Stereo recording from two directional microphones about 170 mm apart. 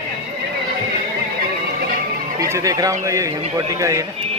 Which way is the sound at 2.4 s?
20° right (ahead or behind).